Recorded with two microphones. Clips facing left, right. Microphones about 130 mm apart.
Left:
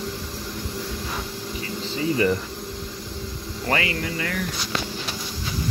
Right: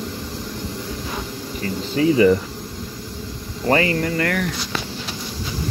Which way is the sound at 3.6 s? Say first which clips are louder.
Right 7 dB; 35° right (ahead or behind).